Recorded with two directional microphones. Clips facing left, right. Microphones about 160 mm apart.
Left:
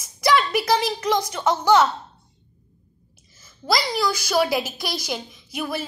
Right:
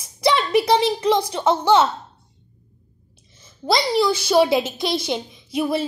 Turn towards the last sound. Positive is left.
turn(degrees=-30)  # may be behind; listen again after turning